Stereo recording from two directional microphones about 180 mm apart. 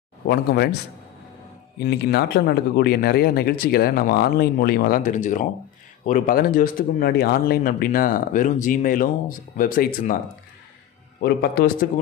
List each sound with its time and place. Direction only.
0.3 s speech: 60° left (ahead or behind)
1.8 s speech: 65° left (ahead or behind)
11.1 s speech: 60° left (ahead or behind)